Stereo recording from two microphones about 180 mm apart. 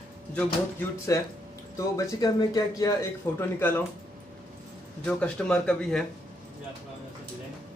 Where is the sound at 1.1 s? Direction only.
20° left (ahead or behind).